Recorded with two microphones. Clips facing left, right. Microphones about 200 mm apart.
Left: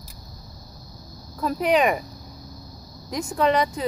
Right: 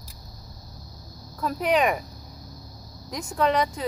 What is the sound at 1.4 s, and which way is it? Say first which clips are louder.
Speech: left 2 dB; centre (ahead or behind).